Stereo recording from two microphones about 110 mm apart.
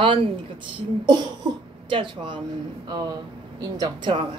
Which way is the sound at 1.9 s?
50° right (ahead or behind).